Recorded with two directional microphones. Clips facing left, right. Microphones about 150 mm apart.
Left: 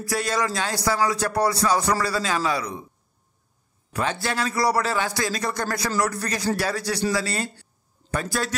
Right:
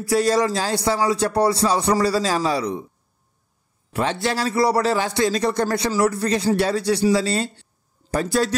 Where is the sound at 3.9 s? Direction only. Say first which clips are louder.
Right 4 dB; 25° right (ahead or behind).